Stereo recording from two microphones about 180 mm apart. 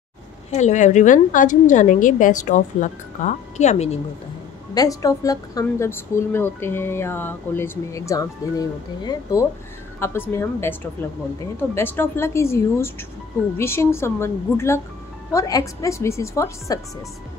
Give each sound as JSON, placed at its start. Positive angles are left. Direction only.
{"t": 0.5, "sound": "a woman's voice", "side_deg": 40}
{"t": 4.7, "sound": "speech", "side_deg": 20}